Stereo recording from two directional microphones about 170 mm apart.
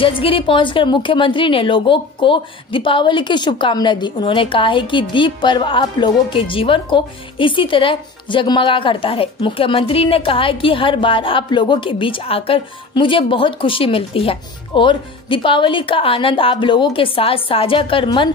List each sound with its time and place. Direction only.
0.0 s a woman's voice: 30° left (ahead or behind)